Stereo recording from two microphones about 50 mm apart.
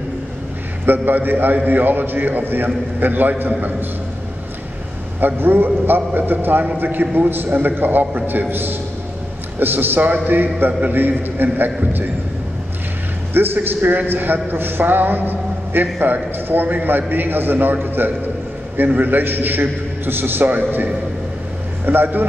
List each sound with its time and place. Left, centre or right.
0.8 s a man's voice: right
5.2 s a man's voice: right
13.3 s a man's voice: right
18.8 s a man's voice: right